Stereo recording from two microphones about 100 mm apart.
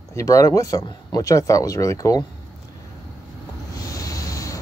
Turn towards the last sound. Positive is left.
turn(degrees=35)  # may be behind; listen again after turning